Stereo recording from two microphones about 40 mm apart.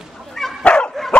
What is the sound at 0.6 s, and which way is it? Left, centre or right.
Dog, left.